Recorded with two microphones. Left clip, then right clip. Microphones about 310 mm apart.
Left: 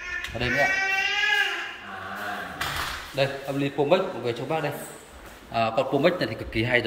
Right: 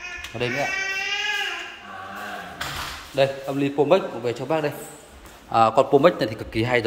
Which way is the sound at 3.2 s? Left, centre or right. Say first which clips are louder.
Right 5 dB; centre.